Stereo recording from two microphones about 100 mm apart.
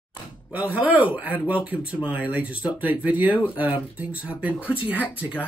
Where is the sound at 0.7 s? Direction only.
15° right (ahead or behind).